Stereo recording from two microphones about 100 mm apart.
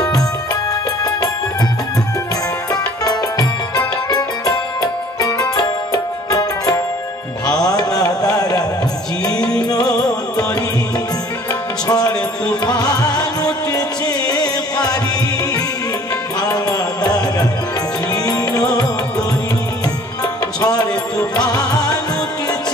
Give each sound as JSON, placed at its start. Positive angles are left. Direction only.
{"t": 2.7, "sound": "music", "side_deg": 40}
{"t": 11.9, "sound": "music", "side_deg": 40}
{"t": 16.3, "sound": "music", "side_deg": 40}
{"t": 20.6, "sound": "music", "side_deg": 40}